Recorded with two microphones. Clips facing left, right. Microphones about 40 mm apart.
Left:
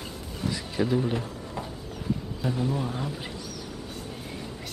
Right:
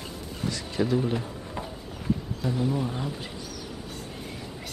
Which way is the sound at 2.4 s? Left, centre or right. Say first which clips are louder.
Even; centre.